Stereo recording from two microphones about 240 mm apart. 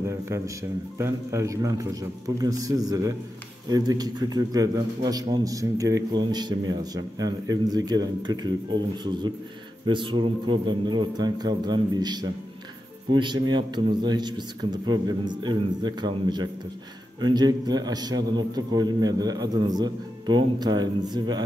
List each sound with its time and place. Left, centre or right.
0.0 s a man's voice: centre